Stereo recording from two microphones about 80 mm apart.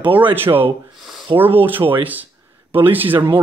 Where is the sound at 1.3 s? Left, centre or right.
Right.